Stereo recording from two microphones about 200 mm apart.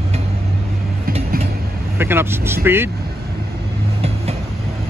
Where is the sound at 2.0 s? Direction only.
10° right (ahead or behind).